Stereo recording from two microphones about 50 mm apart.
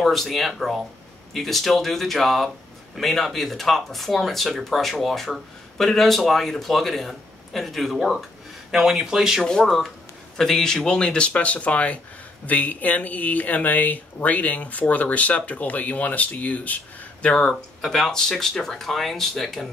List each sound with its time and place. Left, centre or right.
0.0 s speech: centre
9.7 s speech: centre; by 17.5 s left
17.5 s speech: centre